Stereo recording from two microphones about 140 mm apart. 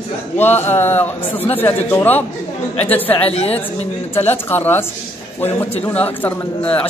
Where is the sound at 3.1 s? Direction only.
45° left (ahead or behind).